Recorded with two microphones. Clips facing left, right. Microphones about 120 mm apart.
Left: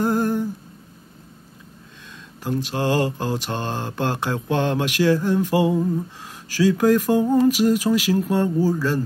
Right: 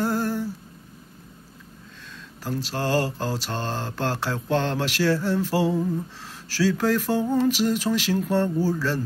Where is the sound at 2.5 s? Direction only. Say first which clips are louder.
Left 4 dB; 15° left (ahead or behind).